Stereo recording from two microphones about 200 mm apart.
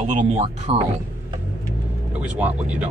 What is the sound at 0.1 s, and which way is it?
Speech, 35° right (ahead or behind).